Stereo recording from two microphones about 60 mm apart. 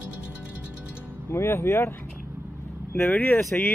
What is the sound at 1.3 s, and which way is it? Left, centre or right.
Speech, left.